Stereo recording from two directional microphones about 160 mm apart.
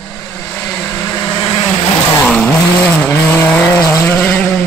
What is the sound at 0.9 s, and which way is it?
Vehicle, 20° left (ahead or behind).